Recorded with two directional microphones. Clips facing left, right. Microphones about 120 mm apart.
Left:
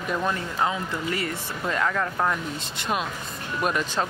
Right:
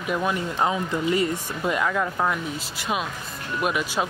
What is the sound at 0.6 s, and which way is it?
Speech, 20° right (ahead or behind).